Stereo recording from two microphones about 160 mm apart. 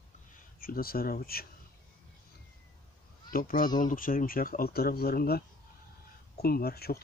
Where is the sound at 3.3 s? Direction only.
60° left (ahead or behind).